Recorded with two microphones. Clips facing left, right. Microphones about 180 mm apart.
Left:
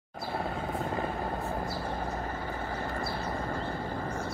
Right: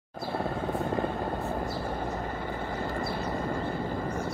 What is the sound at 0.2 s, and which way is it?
Vehicle, 35° right (ahead or behind).